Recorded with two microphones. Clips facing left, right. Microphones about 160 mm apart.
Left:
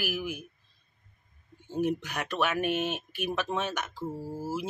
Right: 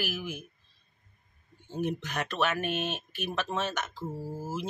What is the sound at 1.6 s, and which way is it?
Speech, 10° left (ahead or behind).